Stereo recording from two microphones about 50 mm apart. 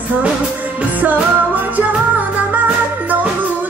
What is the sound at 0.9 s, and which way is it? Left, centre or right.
Music, right.